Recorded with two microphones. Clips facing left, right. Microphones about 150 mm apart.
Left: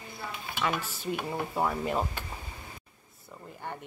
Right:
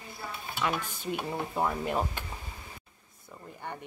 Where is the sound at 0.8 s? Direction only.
50° right (ahead or behind).